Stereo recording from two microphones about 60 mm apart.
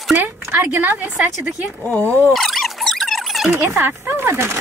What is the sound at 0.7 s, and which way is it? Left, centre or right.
Speech, right.